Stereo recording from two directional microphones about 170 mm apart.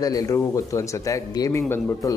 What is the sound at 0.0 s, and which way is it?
Speech, 20° left (ahead or behind).